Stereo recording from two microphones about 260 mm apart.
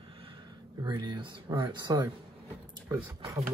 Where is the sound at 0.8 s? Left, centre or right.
Centre.